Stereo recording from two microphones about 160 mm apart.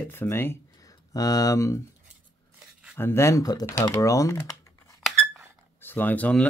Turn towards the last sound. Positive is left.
turn(degrees=10)  # may be behind; listen again after turning